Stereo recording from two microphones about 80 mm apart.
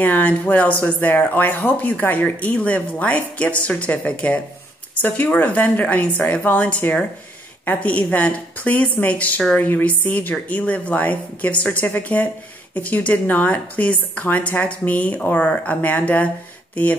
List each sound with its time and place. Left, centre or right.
0.0 s speech: centre